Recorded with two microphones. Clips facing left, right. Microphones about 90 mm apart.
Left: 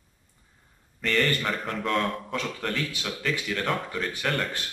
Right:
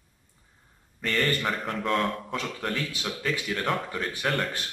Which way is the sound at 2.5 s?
20° right (ahead or behind).